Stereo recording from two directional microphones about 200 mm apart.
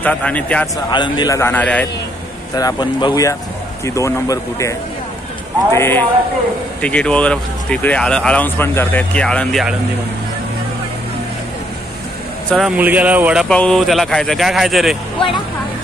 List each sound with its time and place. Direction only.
0.0 s a man's voice: 5° left (ahead or behind)
0.8 s a man's voice: 20° left (ahead or behind)
2.5 s a man's voice: 20° left (ahead or behind); by 9.8 s centre (ahead or behind)
12.4 s speech: centre (ahead or behind)